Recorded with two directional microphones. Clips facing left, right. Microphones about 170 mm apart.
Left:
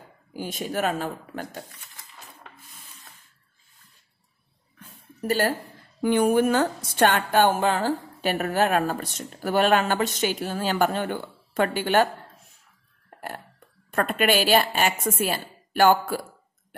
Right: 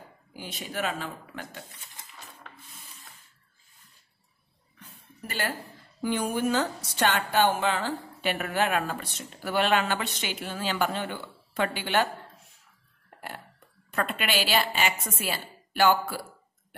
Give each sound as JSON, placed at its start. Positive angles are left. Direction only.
{"t": 0.4, "sound": "a woman's voice", "side_deg": 45}
{"t": 4.7, "sound": "a sound", "side_deg": 45}
{"t": 5.9, "sound": "a woman's voice", "side_deg": 55}
{"t": 13.8, "sound": "a woman's voice", "side_deg": 50}